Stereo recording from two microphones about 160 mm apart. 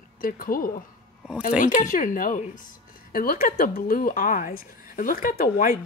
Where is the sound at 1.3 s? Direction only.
10° right (ahead or behind).